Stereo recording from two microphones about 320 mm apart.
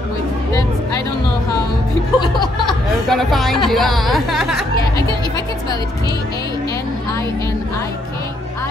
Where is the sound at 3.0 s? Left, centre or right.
Centre.